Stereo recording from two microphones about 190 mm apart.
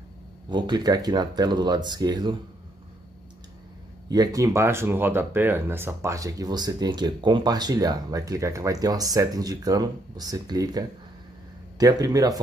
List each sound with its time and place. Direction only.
0.5 s speech: 25° right (ahead or behind)
4.1 s speech: 20° right (ahead or behind)